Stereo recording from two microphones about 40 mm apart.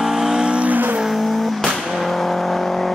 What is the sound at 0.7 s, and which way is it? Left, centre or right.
Vehicle, right.